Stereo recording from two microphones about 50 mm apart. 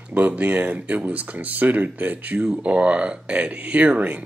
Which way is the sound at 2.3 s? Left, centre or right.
Centre.